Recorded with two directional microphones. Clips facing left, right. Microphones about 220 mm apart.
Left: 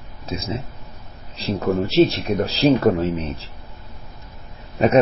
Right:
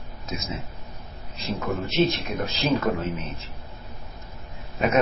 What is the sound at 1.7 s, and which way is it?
Speech, 35° left (ahead or behind).